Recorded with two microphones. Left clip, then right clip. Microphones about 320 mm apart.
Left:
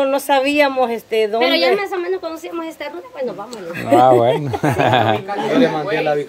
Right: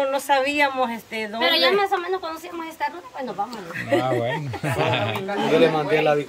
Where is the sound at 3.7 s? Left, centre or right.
Centre.